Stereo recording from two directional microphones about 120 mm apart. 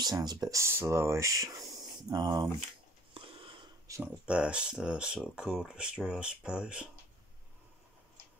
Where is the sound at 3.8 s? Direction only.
25° right (ahead or behind).